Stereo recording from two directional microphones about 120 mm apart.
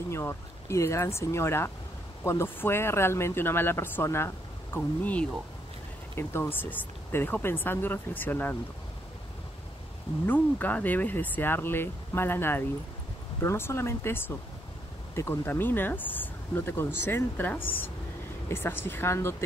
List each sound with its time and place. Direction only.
0.1 s speech: 20° left (ahead or behind)
10.2 s speech: 15° left (ahead or behind)